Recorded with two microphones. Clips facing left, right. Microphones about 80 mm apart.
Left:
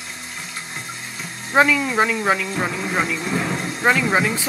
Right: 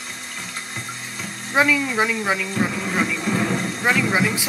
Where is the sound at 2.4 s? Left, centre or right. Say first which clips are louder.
Even; centre.